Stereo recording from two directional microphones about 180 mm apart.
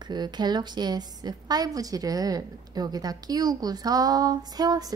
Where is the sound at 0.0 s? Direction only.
25° right (ahead or behind).